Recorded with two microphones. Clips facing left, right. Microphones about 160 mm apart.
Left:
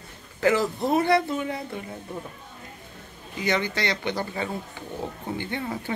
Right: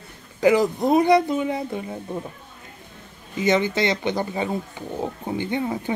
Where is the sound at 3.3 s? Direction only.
20° right (ahead or behind).